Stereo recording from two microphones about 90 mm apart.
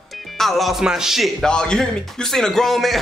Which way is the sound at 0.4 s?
Centre (ahead or behind).